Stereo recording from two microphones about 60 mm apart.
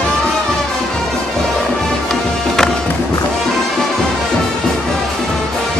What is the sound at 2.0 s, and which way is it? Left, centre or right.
Music, centre.